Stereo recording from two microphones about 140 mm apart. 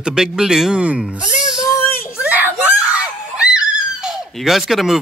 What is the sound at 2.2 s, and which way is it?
Screaming, 10° right (ahead or behind).